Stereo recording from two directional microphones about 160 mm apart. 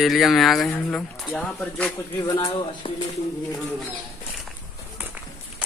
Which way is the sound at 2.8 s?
30° left (ahead or behind).